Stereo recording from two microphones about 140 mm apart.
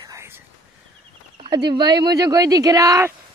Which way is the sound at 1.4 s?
35° right (ahead or behind).